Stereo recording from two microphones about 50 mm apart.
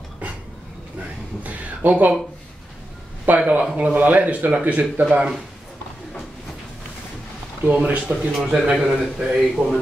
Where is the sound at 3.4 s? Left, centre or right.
Right.